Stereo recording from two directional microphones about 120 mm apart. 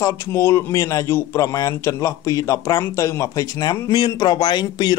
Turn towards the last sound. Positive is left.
turn(degrees=35)  # may be behind; listen again after turning